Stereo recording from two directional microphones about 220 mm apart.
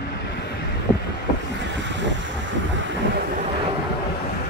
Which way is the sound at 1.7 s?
55° right (ahead or behind).